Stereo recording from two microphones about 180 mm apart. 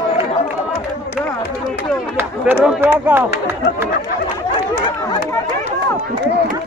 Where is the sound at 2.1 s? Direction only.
10° right (ahead or behind).